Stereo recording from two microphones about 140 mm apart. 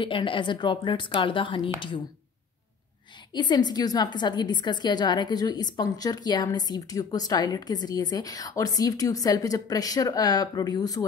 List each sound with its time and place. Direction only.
0.0 s a woman's voice: 35° left (ahead or behind)
3.3 s a woman's voice: 30° left (ahead or behind)